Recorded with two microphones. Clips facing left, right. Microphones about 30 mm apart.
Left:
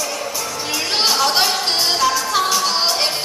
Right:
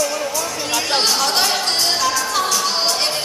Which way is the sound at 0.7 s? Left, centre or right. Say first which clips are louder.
Even; centre.